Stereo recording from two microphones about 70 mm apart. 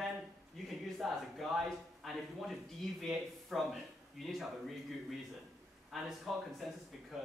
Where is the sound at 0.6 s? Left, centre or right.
Centre.